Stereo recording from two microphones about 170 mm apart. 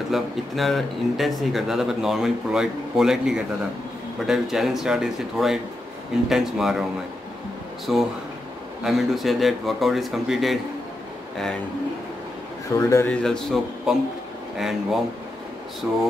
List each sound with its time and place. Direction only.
0.1 s speech: centre (ahead or behind)
7.9 s speech: centre (ahead or behind)
12.7 s speech: 20° left (ahead or behind)
13.0 s speech: 5° left (ahead or behind)